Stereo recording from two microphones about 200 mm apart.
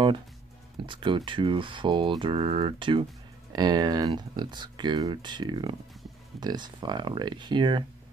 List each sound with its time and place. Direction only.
0.7 s speech: 25° right (ahead or behind)